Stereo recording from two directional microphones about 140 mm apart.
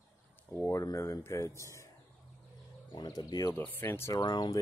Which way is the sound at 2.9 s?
30° left (ahead or behind).